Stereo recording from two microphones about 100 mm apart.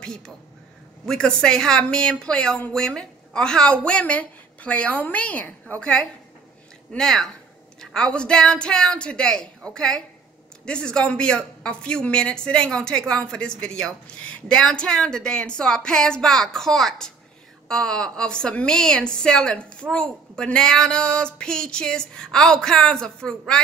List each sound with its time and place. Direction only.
1.0 s a woman's voice: 5° left (ahead or behind)